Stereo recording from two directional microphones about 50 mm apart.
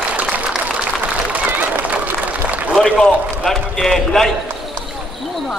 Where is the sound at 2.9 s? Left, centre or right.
Centre.